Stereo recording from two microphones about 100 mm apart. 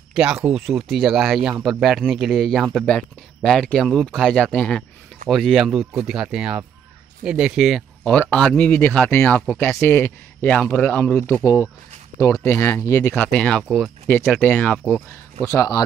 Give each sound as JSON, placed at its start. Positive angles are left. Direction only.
{"t": 0.1, "sound": "speech", "side_deg": -10}
{"t": 8.0, "sound": "speech", "side_deg": 15}
{"t": 11.4, "sound": "speech", "side_deg": 30}
{"t": 13.1, "sound": "speech", "side_deg": 5}
{"t": 15.4, "sound": "speech", "side_deg": 35}